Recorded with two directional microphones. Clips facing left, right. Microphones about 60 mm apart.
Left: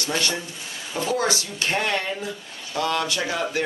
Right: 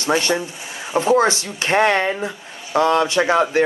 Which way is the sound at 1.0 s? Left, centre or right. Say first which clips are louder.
Right 8 dB; right.